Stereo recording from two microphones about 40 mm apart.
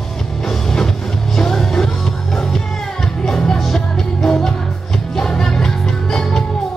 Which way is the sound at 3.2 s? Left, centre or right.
Centre.